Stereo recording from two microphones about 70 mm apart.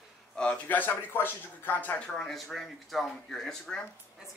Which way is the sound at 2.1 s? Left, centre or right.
Centre.